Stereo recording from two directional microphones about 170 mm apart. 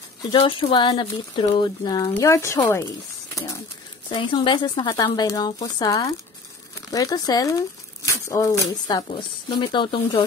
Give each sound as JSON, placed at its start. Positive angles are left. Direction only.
{"t": 0.2, "sound": "speech", "side_deg": 30}
{"t": 4.1, "sound": "speech", "side_deg": 30}